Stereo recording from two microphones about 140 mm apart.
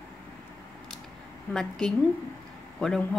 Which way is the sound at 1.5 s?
5° left (ahead or behind).